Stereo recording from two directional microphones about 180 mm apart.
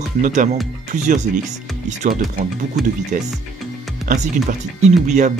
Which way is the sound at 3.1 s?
50° right (ahead or behind).